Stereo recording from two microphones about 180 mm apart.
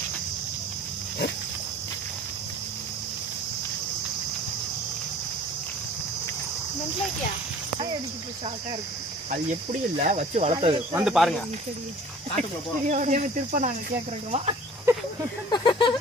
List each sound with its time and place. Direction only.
9.3 s speech: 40° right (ahead or behind)
10.9 s speech: 10° right (ahead or behind)
11.1 s speech: centre (ahead or behind)
12.9 s speech: 45° right (ahead or behind)
14.9 s a sound: 15° right (ahead or behind)
15.5 s a sound: 25° left (ahead or behind)